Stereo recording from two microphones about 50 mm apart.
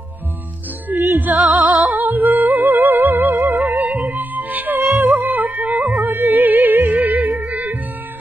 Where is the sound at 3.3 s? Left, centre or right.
Right.